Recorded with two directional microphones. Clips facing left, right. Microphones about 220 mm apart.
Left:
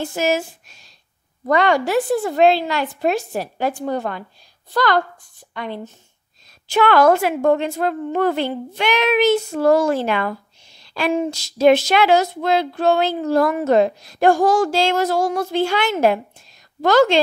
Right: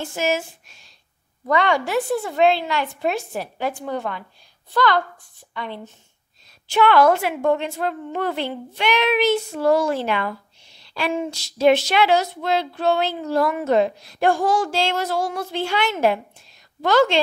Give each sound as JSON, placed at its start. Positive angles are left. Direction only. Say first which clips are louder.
{"t": 0.0, "sound": "a woman's voice", "louder": "left 3 dB", "side_deg": 40}